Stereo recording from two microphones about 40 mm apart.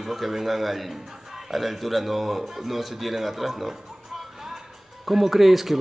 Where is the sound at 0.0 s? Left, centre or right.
Centre.